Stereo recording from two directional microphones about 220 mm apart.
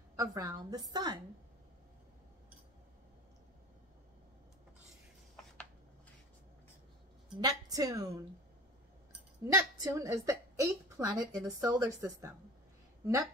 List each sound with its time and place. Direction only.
0.1 s a woman's voice: 15° right (ahead or behind)
4.8 s rub: 5° left (ahead or behind)
7.3 s a woman's voice: 15° right (ahead or behind)
9.1 s a woman's voice: 15° right (ahead or behind)